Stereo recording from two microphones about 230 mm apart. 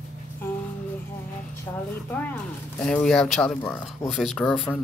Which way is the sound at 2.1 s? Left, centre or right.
Centre.